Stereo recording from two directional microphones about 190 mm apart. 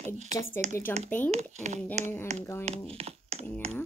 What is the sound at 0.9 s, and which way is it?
Speech, 10° left (ahead or behind).